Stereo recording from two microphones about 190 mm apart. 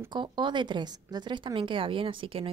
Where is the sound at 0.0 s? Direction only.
25° right (ahead or behind).